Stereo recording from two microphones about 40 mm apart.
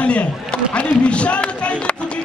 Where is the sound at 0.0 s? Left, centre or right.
Left.